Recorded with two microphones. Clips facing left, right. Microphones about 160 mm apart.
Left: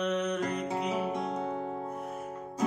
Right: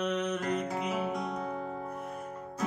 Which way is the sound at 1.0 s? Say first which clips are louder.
Left 1 dB; 25° left (ahead or behind).